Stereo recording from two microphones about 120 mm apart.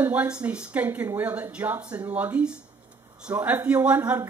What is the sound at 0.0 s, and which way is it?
Speech, 10° right (ahead or behind).